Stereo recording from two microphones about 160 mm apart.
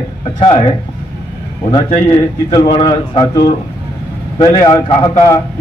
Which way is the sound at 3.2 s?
25° left (ahead or behind).